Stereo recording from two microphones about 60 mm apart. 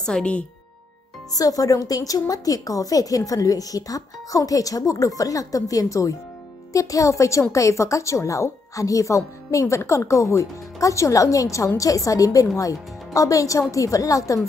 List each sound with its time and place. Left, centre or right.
0.0 s speech: centre
1.3 s a woman's voice: left